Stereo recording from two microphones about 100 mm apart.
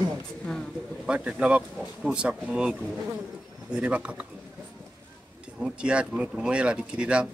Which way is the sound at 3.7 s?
10° right (ahead or behind).